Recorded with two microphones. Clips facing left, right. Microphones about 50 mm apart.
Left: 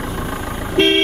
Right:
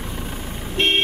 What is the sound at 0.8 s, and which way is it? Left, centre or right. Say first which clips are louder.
Vehicle: left 6 dB; left.